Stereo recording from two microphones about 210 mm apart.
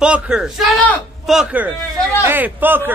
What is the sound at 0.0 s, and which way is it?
A man's voice, 5° right (ahead or behind).